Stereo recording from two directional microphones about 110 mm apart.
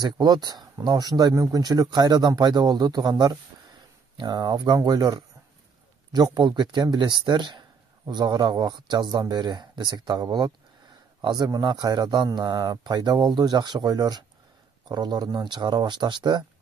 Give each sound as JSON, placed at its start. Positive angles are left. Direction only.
{"t": 0.0, "sound": "speech", "side_deg": -40}